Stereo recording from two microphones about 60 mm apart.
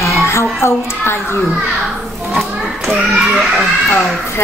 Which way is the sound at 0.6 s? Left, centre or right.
Left.